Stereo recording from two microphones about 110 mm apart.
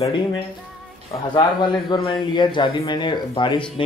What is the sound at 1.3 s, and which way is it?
Speech, 45° left (ahead or behind).